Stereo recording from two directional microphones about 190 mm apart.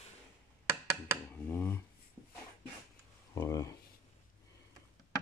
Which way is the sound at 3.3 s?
15° left (ahead or behind).